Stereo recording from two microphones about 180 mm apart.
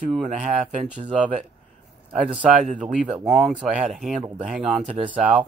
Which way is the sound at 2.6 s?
45° right (ahead or behind).